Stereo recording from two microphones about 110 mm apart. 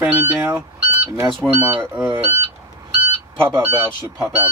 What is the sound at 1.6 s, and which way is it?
Speech, 20° right (ahead or behind).